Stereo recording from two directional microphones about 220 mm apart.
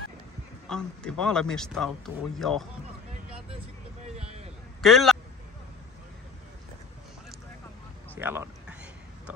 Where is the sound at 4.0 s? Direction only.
30° right (ahead or behind).